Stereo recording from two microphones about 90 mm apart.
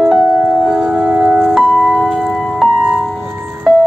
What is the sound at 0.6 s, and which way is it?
Tubular bells, centre (ahead or behind).